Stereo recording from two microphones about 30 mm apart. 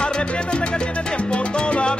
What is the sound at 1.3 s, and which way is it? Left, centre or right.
Salsa music, left.